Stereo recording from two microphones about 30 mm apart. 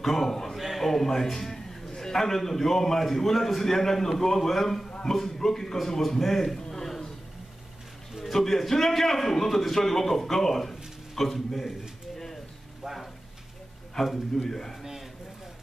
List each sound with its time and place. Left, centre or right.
0.0 s a man's voice: centre
0.6 s a man's voice: centre
0.8 s a man's voice: centre
4.8 s a sound: left
5.1 s a man's voice: centre
8.3 s a man's voice: centre
12.8 s a sound: centre
13.9 s a man's voice: centre